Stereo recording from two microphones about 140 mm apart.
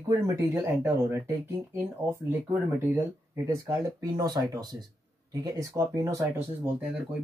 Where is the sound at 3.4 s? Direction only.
20° right (ahead or behind).